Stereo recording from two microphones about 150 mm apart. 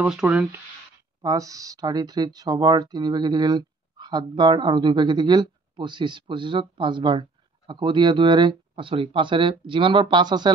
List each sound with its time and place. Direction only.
0.0 s speech: 5° right (ahead or behind)
1.2 s speech: 20° right (ahead or behind)